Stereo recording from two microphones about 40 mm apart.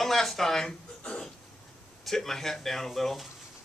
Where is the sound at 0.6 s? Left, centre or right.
Centre.